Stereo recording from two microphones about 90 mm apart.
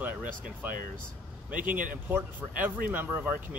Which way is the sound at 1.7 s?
20° right (ahead or behind).